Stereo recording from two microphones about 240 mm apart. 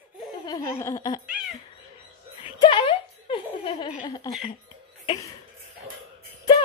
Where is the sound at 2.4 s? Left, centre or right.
Left.